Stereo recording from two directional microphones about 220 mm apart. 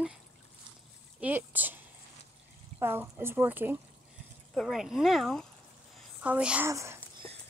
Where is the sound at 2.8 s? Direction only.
10° right (ahead or behind).